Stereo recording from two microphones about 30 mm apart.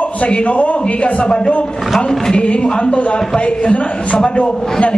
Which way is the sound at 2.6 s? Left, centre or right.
Left.